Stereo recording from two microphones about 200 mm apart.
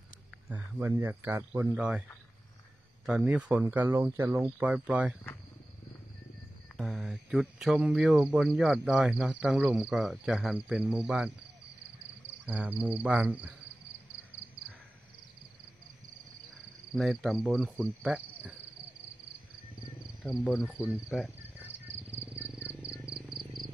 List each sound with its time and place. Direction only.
0.5 s speech: 10° right (ahead or behind)
3.1 s speech: 5° right (ahead or behind)
6.8 s speech: centre (ahead or behind)
12.4 s speech: 5° right (ahead or behind)
16.9 s speech: centre (ahead or behind)
20.4 s speech: centre (ahead or behind)
20.8 s insect: centre (ahead or behind)
22.8 s a sound: 5° right (ahead or behind)